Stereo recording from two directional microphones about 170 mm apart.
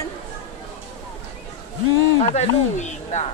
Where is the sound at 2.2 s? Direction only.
40° left (ahead or behind).